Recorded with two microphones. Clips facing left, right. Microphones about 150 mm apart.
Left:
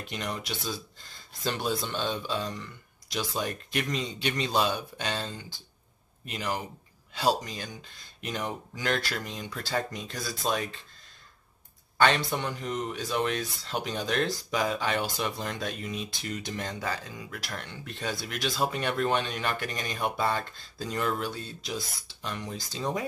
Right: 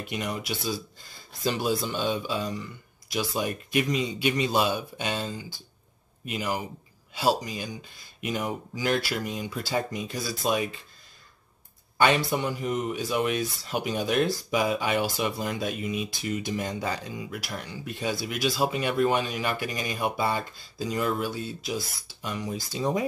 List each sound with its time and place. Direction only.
0.0 s speech: 10° right (ahead or behind)
12.0 s speech: 10° right (ahead or behind)